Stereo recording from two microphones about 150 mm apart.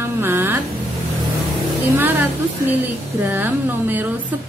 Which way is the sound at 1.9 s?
15° right (ahead or behind).